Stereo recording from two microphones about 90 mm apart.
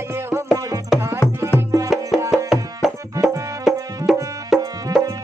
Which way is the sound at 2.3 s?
5° right (ahead or behind).